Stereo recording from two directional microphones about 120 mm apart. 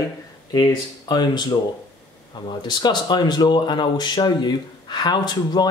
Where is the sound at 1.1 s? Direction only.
35° left (ahead or behind).